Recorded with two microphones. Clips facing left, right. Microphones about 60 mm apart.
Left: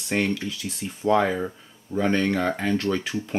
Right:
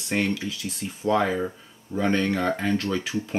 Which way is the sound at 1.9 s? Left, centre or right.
Right.